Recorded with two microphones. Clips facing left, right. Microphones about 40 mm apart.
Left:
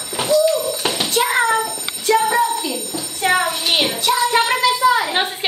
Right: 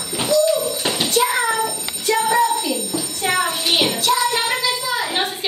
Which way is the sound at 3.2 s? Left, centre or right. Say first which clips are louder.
Left 4 dB; centre.